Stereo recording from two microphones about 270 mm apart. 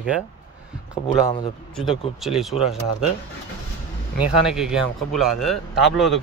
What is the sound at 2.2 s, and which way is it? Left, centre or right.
Speech, centre.